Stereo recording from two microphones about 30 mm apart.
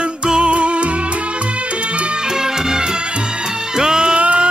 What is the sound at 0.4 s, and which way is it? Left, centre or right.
Music, right.